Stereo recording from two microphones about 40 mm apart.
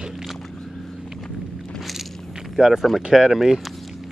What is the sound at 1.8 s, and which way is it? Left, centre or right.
Vehicle, centre.